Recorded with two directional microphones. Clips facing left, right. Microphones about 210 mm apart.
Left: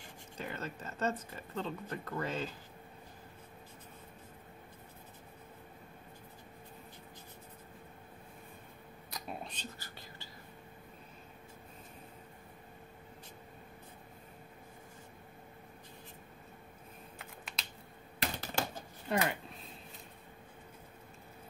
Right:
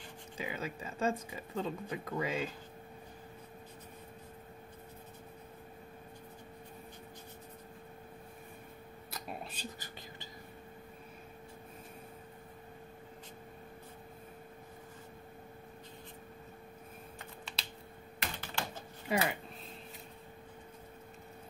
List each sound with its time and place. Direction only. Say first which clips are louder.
0.4 s speech: right 2 dB; 10° right (ahead or behind)
9.1 s whispering: even; 5° right (ahead or behind)
18.2 s typewriter: left 4 dB; 40° left (ahead or behind)
19.0 s speech: even; 5° right (ahead or behind)